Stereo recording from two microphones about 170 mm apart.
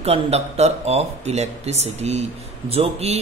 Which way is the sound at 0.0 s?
35° right (ahead or behind).